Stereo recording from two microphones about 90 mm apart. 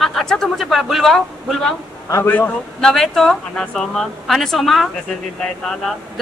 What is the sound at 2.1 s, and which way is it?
Speech, 25° left (ahead or behind).